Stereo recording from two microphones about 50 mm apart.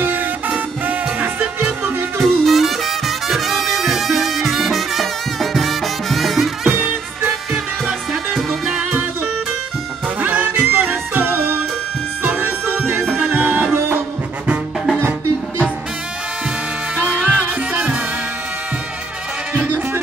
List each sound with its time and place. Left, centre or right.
0.0 s music: right
2.1 s music: centre
8.1 s music: centre
10.2 s music: right
15.0 s music: right
16.9 s music: right